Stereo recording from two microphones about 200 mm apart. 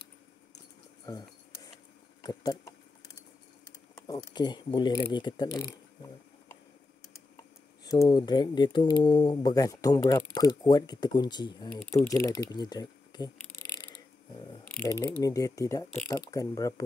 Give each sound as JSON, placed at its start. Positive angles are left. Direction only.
{"t": 2.2, "sound": "speech", "side_deg": 20}
{"t": 3.9, "sound": "speech", "side_deg": 15}
{"t": 7.8, "sound": "speech", "side_deg": 20}